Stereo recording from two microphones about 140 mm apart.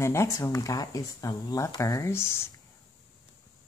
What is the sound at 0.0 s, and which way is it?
Speech, 20° left (ahead or behind).